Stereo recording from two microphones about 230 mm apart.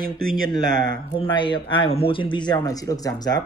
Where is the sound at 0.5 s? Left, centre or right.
Centre.